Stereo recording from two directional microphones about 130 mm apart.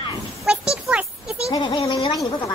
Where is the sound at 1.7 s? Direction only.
40° left (ahead or behind).